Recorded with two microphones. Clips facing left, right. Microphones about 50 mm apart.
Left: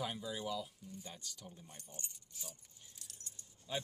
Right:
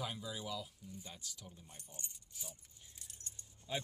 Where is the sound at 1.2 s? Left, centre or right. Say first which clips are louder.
Left 1 dB; centre.